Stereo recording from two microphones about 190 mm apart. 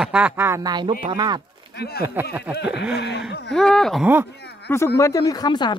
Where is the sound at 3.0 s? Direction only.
60° left (ahead or behind).